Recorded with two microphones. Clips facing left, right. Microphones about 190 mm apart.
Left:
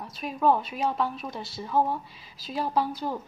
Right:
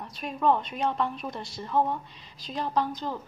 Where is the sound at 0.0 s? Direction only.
Centre (ahead or behind).